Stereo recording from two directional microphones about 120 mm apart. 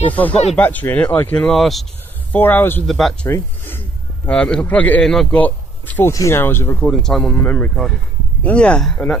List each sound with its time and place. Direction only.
0.1 s speech: 10° left (ahead or behind)
2.3 s speech: 15° left (ahead or behind)
2.9 s speech: 5° left (ahead or behind)
3.3 s speech: 20° left (ahead or behind)
4.3 s speech: 10° left (ahead or behind)
5.4 s speech: 15° left (ahead or behind)
6.9 s speech: 5° left (ahead or behind)